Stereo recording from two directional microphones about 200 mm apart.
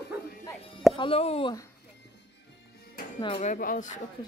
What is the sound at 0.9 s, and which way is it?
Speech, 25° left (ahead or behind).